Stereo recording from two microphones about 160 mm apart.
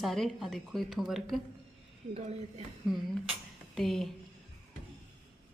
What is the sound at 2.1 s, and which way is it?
Speech, 40° right (ahead or behind).